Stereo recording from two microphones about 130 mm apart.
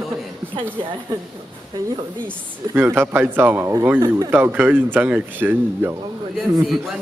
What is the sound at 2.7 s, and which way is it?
Speech, 15° right (ahead or behind).